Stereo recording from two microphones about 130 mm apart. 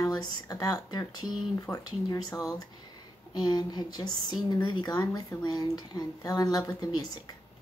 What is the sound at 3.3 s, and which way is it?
A woman's voice, 35° left (ahead or behind).